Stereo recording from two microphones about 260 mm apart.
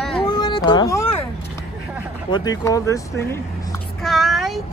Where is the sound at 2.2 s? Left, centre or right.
Centre.